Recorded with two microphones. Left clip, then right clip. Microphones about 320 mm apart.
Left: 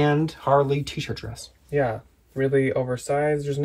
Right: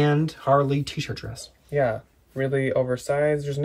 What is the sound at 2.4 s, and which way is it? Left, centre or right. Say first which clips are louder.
Speech: left 1 dB; centre.